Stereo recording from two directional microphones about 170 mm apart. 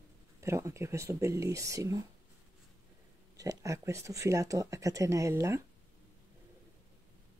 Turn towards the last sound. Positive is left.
turn(degrees=-15)  # may be behind; listen again after turning